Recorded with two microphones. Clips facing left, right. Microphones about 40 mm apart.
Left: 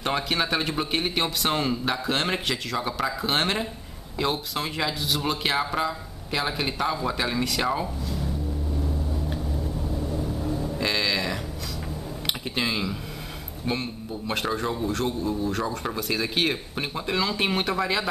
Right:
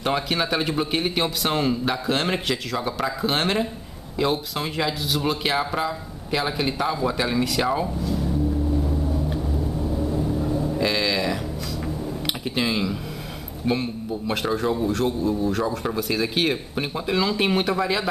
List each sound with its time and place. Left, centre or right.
0.0 s a man's voice: centre
9.9 s vehicle: centre
10.8 s cattle: centre
12.4 s a man's voice: centre